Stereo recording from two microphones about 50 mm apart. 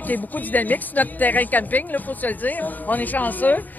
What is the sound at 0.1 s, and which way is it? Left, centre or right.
Speech, left.